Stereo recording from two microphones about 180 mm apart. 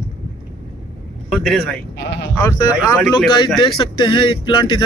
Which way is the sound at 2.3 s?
20° left (ahead or behind).